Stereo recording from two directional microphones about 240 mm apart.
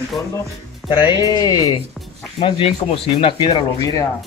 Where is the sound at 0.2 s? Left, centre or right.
Centre.